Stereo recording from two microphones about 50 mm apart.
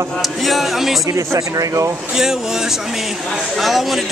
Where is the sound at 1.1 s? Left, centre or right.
Right.